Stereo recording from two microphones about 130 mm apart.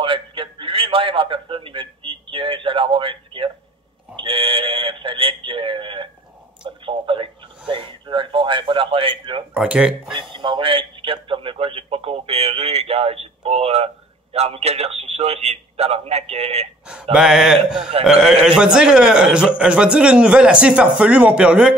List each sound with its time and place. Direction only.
0.0 s a man's voice: 40° right (ahead or behind)
4.2 s a sound: 45° right (ahead or behind)
9.5 s a man's voice: 10° right (ahead or behind)
10.3 s radio: 40° right (ahead or behind)
14.3 s a man's voice: 55° right (ahead or behind)
17.1 s mantra: 5° right (ahead or behind)
18.4 s a man's voice: 5° right (ahead or behind)